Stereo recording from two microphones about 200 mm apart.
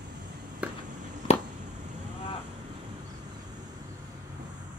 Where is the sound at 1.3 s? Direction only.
30° left (ahead or behind).